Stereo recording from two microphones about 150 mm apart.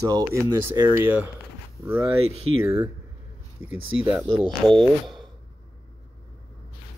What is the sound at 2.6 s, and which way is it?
Speech, 15° right (ahead or behind).